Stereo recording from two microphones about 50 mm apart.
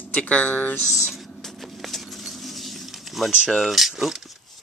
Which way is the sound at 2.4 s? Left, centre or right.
Centre.